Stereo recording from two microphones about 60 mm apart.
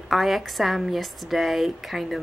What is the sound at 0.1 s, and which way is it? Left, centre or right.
A woman's voice, centre.